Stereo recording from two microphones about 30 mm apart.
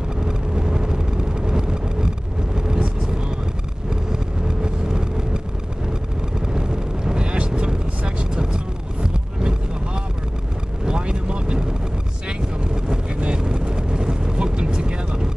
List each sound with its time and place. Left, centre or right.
0.2 s vehicle: right
6.5 s vehicle: right
9.0 s a sound: right
10.9 s vehicle: right